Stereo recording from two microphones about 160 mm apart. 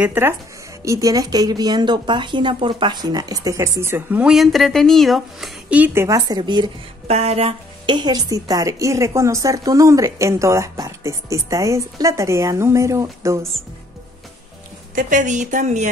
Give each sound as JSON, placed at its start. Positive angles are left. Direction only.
{"t": 0.0, "sound": "a woman's voice", "side_deg": -15}
{"t": 6.0, "sound": "a woman's voice", "side_deg": -20}
{"t": 7.1, "sound": "a woman's voice", "side_deg": -40}
{"t": 15.0, "sound": "a woman's voice", "side_deg": -55}